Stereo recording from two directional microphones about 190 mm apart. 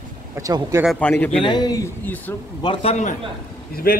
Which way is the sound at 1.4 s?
20° left (ahead or behind).